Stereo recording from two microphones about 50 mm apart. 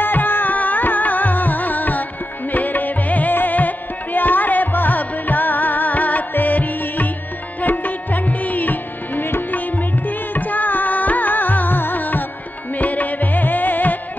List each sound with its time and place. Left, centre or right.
0.0 s music: left